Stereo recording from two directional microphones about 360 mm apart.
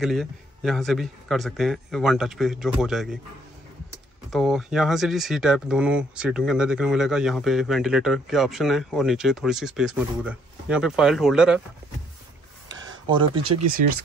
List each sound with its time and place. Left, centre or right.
0.0 s speech: centre
4.3 s speech: centre
12.8 s a sound: centre